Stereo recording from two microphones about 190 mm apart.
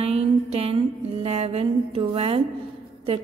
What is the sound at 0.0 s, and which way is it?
Music, 35° right (ahead or behind).